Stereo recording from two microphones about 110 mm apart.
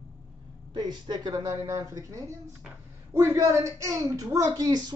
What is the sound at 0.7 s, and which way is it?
A woman's voice, 40° right (ahead or behind).